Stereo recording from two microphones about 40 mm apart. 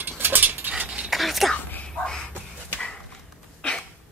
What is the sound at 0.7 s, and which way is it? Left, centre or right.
Dog, right.